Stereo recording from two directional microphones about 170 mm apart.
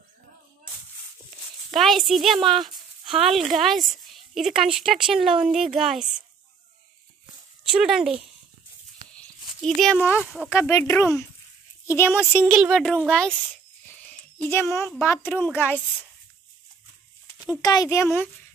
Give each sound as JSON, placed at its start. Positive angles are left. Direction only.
{"t": 1.7, "sound": "speech", "side_deg": 0}
{"t": 7.6, "sound": "speech", "side_deg": -5}
{"t": 9.8, "sound": "speech", "side_deg": 0}
{"t": 10.5, "sound": "speech", "side_deg": 15}
{"t": 12.4, "sound": "speech", "side_deg": 0}
{"t": 17.6, "sound": "speech", "side_deg": 20}